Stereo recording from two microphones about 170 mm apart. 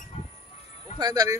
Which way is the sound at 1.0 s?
20° right (ahead or behind).